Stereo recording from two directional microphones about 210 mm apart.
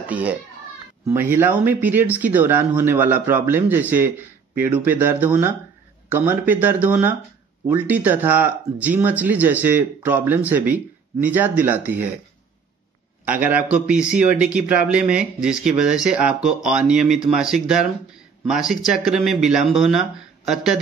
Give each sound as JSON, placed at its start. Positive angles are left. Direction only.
{"t": 0.1, "sound": "speech", "side_deg": -5}
{"t": 13.2, "sound": "speech", "side_deg": -10}